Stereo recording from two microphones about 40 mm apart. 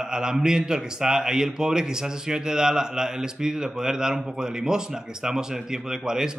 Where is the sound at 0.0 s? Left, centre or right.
Centre.